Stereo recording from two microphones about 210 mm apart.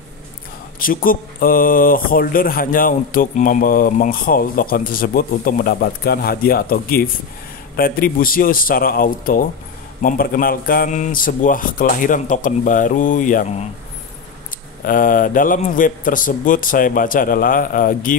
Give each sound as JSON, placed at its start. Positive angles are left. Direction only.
{"t": 0.7, "sound": "a man's voice", "side_deg": 40}
{"t": 14.9, "sound": "a man's voice", "side_deg": 40}